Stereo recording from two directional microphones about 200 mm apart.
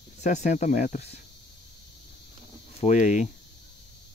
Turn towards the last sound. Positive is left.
turn(degrees=40)  # may be behind; listen again after turning